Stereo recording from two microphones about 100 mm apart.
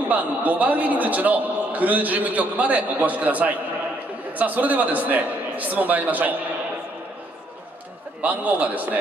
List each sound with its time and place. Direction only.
0.1 s a man's voice: 15° right (ahead or behind)
8.2 s a man's voice: 15° right (ahead or behind)